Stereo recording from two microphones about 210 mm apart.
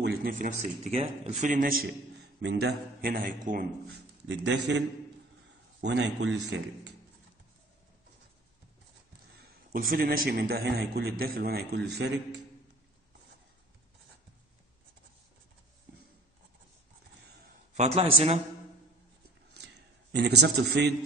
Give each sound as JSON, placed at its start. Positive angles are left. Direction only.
{"t": 0.0, "sound": "a man's voice", "side_deg": -50}
{"t": 4.3, "sound": "speech", "side_deg": -60}
{"t": 9.7, "sound": "a man's voice", "side_deg": -45}
{"t": 17.7, "sound": "speech", "side_deg": -30}
{"t": 19.6, "sound": "a sound", "side_deg": -55}
{"t": 20.4, "sound": "a man's voice", "side_deg": -50}